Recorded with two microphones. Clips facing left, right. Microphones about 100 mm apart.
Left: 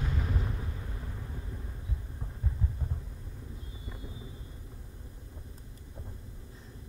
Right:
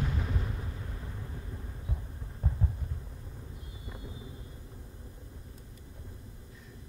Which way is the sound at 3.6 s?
25° left (ahead or behind).